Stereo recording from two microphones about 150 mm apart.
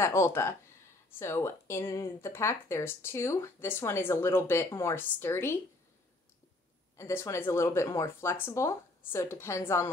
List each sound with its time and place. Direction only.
0.0 s speech: 15° left (ahead or behind)
7.0 s speech: 20° left (ahead or behind)